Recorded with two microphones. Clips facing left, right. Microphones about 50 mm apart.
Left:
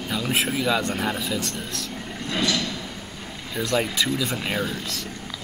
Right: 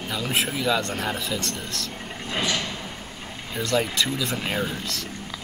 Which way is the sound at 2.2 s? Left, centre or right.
Right.